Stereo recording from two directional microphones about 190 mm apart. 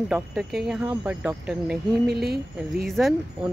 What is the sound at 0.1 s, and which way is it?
Speech, centre (ahead or behind).